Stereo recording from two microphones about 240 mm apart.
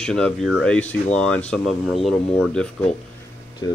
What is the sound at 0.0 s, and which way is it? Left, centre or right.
Speech, centre.